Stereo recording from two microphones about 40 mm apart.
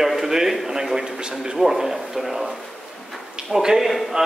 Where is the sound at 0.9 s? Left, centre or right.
Centre.